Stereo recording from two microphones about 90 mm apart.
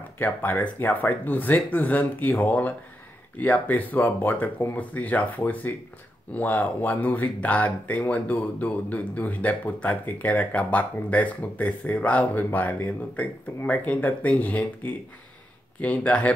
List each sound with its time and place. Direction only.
0.2 s speech: 20° left (ahead or behind)